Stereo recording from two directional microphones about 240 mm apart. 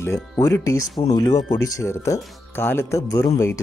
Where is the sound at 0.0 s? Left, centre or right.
Centre.